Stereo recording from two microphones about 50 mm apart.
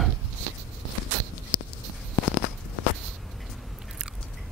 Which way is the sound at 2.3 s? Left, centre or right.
Right.